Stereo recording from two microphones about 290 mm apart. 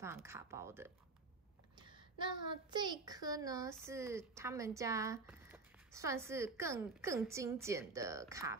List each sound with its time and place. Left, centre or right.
0.0 s speech: centre
1.8 s a sound: centre
2.7 s speech: centre